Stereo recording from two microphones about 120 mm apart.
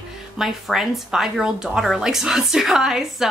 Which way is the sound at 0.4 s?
Centre (ahead or behind).